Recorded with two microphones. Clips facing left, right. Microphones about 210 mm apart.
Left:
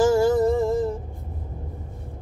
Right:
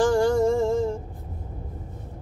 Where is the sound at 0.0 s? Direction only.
5° left (ahead or behind).